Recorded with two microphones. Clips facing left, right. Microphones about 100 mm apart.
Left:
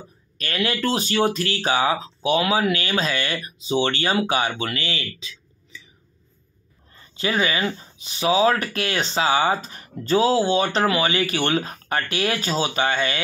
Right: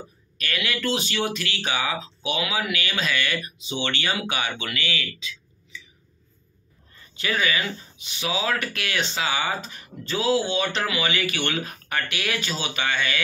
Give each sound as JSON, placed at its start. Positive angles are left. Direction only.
{"t": 0.4, "sound": "speech", "side_deg": 35}
{"t": 7.2, "sound": "speech", "side_deg": 30}